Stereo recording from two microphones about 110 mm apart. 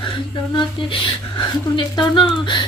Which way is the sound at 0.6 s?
50° left (ahead or behind).